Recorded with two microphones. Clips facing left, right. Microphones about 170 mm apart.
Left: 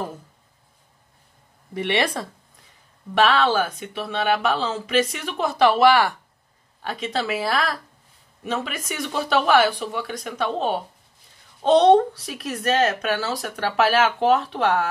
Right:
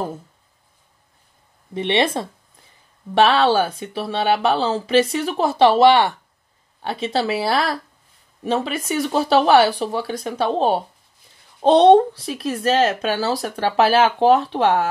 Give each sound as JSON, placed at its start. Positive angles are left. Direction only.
{"t": 1.7, "sound": "speech", "side_deg": -25}